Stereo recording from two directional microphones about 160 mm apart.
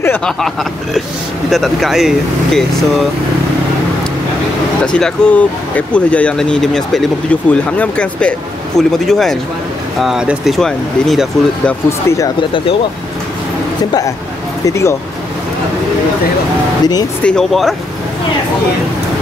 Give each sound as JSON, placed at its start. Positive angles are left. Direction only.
{"t": 0.0, "sound": "speech", "side_deg": 10}
{"t": 1.5, "sound": "speech", "side_deg": 0}
{"t": 4.8, "sound": "speech", "side_deg": 5}
{"t": 12.4, "sound": "speech", "side_deg": 30}
{"t": 14.7, "sound": "speech", "side_deg": 20}
{"t": 17.2, "sound": "speech", "side_deg": 5}